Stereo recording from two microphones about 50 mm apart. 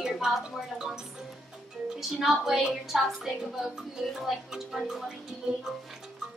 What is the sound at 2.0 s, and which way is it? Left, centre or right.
A woman's voice, centre.